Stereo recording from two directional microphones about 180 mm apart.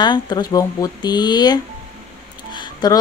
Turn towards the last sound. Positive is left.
turn(degrees=20)  # may be behind; listen again after turning